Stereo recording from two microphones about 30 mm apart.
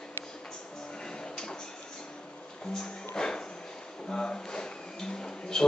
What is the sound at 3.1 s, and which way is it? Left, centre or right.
Music, left.